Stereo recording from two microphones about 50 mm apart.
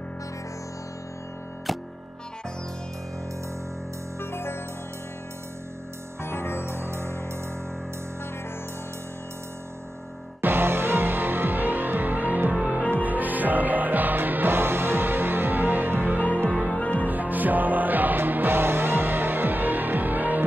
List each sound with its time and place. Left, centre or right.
1.7 s music: centre
4.2 s music: left
6.2 s music: left
6.6 s music: right
10.4 s music: right
16.3 s music: left
17.0 s music: right